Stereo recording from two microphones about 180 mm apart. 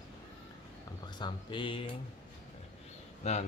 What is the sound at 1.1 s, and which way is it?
Speech, 25° left (ahead or behind).